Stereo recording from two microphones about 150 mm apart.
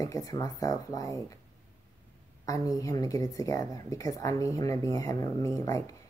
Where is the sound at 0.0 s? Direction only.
25° left (ahead or behind).